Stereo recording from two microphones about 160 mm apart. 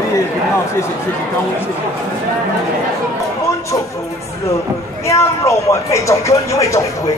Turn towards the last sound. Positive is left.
turn(degrees=20)  # may be behind; listen again after turning